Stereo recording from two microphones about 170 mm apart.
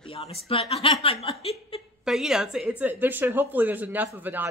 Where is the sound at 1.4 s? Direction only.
35° left (ahead or behind).